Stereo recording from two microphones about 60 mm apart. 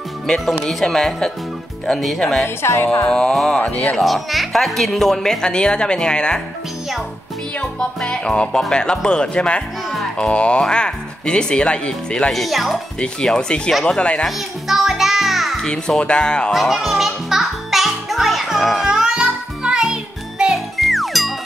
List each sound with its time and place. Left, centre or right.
0.7 s speech: centre
2.4 s speech: left
3.1 s speech: centre
7.8 s speech: centre
9.8 s music: centre
10.2 s speech: centre
12.3 s speech: centre
13.0 s speech: centre
14.2 s music: centre
16.0 s speech: centre
16.5 s music: centre
18.9 s music: centre
20.5 s music: centre